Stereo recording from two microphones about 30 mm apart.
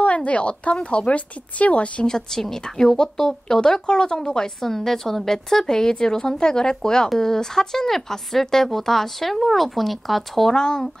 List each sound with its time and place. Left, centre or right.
0.0 s speech: left
2.0 s a woman's voice: centre
3.8 s a woman's voice: left
4.6 s a woman's voice: centre
10.5 s a woman's voice: left